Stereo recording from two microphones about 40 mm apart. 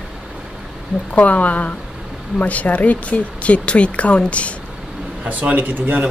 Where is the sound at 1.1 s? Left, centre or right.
Left.